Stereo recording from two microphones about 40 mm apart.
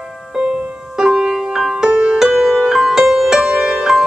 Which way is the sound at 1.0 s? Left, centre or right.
Centre.